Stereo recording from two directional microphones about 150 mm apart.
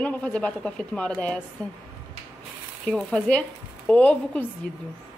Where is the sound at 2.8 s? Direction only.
5° left (ahead or behind).